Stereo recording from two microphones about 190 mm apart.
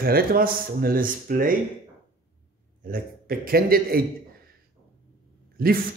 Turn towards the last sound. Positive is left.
turn(degrees=-50)  # may be behind; listen again after turning